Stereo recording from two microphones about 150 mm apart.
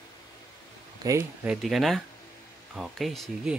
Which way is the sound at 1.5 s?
Centre (ahead or behind).